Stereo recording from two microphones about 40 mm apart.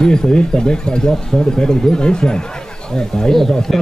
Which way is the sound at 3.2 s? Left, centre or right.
Centre.